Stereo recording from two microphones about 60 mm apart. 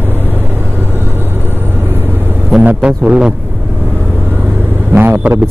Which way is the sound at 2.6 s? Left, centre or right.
Right.